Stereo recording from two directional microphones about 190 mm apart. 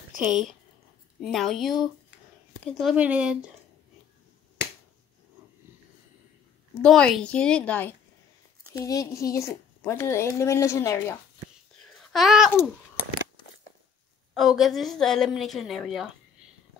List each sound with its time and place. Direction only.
0.2 s a woman's voice: centre (ahead or behind)
6.8 s a woman's voice: centre (ahead or behind)
8.7 s a woman's voice: 20° left (ahead or behind)
11.8 s babbling: centre (ahead or behind)
14.3 s a woman's voice: centre (ahead or behind)